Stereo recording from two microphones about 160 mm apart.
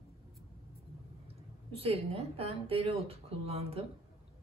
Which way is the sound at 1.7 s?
40° right (ahead or behind).